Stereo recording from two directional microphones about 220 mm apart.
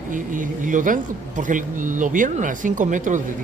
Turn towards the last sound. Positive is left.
turn(degrees=-35)  # may be behind; listen again after turning